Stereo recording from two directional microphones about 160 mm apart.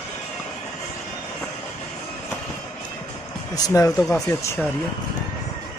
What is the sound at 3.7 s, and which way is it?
Speech, 20° left (ahead or behind).